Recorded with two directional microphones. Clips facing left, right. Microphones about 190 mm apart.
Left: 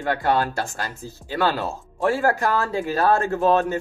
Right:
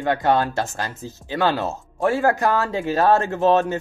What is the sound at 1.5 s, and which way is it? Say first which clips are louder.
Speech: right 2 dB; 25° right (ahead or behind).